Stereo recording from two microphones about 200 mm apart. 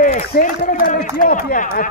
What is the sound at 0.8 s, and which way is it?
A man's voice, 45° left (ahead or behind).